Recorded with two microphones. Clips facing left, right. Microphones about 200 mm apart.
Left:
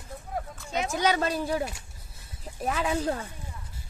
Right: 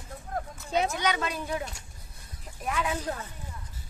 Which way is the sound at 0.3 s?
5° left (ahead or behind).